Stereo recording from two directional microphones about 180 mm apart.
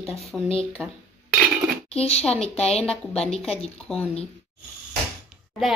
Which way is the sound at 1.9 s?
35° left (ahead or behind).